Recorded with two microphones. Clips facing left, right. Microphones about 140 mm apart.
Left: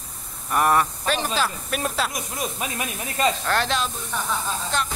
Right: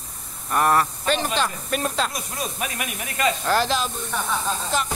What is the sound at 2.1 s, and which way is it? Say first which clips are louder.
Speech: left 1 dB; 20° left (ahead or behind).